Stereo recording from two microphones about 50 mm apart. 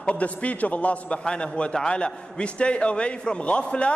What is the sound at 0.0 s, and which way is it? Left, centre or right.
A man's voice, left.